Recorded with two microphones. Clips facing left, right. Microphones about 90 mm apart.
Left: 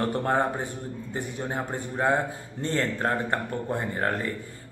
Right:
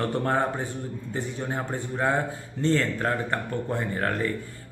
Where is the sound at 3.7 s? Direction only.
20° left (ahead or behind).